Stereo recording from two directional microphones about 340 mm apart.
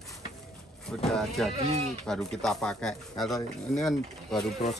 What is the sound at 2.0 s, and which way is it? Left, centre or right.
Speech, centre.